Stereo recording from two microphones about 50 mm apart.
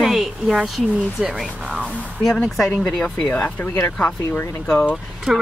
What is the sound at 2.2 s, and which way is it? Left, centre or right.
Speech, centre.